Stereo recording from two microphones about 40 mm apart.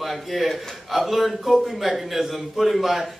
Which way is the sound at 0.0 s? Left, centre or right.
Centre.